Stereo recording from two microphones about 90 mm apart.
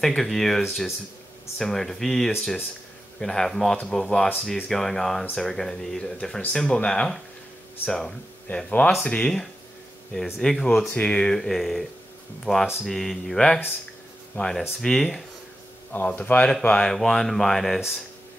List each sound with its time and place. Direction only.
0.0 s speech: 5° left (ahead or behind)
14.3 s speech: 20° left (ahead or behind)
14.8 s speech: 5° left (ahead or behind)
15.9 s speech: 20° left (ahead or behind)